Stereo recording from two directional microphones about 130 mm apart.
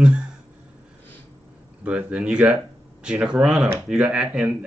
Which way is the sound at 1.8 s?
10° right (ahead or behind).